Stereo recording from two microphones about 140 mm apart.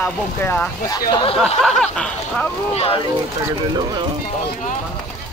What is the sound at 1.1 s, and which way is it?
Speech, 40° left (ahead or behind).